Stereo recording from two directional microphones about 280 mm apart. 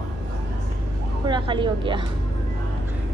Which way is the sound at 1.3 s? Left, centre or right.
Centre.